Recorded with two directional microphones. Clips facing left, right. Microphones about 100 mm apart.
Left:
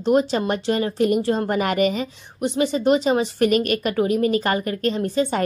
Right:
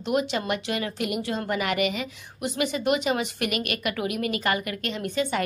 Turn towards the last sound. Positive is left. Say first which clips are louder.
# left 6 dB
turn(degrees=35)  # may be behind; listen again after turning